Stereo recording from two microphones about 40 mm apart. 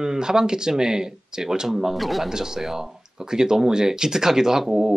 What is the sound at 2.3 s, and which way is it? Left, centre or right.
Speech, centre.